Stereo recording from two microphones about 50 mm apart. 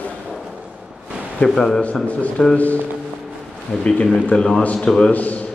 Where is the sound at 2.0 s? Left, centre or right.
Left.